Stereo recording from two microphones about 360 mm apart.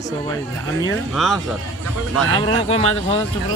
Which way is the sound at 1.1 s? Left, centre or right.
Centre.